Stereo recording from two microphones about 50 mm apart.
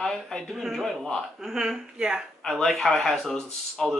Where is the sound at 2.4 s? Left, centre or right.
Centre.